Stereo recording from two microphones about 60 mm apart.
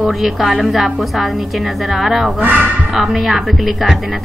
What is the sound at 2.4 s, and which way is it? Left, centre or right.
Speech, right.